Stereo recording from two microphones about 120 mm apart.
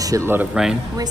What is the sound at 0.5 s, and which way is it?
Speech, 5° right (ahead or behind).